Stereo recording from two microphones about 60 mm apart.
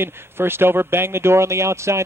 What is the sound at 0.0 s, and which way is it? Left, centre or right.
Speech, right.